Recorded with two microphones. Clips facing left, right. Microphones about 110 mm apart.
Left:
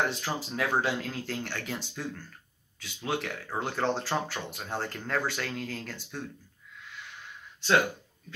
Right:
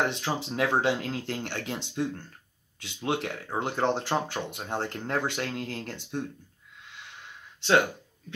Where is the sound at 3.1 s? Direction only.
25° right (ahead or behind).